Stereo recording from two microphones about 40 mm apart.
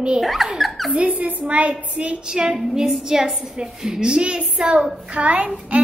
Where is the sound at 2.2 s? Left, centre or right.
Centre.